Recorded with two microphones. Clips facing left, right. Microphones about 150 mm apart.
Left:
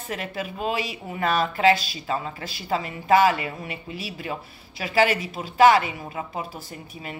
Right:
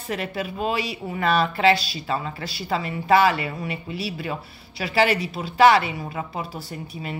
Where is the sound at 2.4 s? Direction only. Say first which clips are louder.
Even; 45° left (ahead or behind).